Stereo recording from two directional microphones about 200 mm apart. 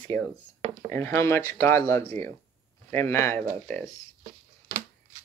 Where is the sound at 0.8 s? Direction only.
15° left (ahead or behind).